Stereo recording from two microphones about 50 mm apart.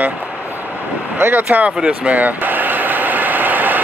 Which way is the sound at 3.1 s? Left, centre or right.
Right.